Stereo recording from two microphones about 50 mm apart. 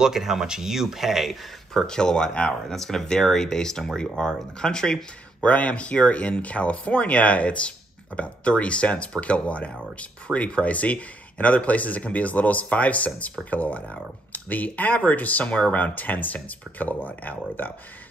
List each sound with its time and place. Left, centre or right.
0.0 s speech: centre
1.7 s speech: centre
5.4 s speech: left